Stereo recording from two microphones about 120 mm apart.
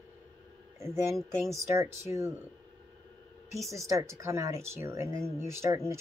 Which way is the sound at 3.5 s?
25° right (ahead or behind).